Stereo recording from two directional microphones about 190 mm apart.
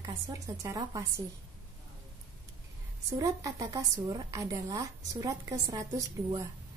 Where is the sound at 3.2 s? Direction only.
15° right (ahead or behind).